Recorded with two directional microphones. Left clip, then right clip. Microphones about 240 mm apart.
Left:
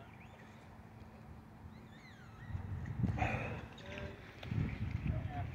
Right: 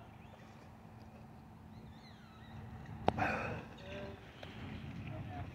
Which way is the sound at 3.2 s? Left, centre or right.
Centre.